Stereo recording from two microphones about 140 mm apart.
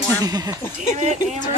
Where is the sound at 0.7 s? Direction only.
55° right (ahead or behind).